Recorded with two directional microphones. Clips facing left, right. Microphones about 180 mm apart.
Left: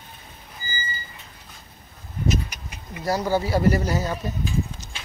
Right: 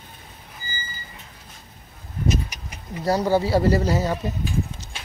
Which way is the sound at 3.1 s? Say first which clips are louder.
Right 3 dB; 30° right (ahead or behind).